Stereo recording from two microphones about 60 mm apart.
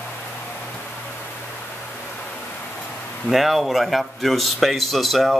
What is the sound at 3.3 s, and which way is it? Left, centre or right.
A man's voice, centre.